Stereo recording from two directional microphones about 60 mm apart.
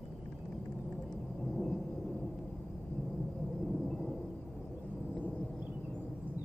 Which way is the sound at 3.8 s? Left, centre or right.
Centre.